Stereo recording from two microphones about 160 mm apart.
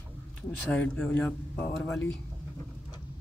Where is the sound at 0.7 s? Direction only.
10° left (ahead or behind).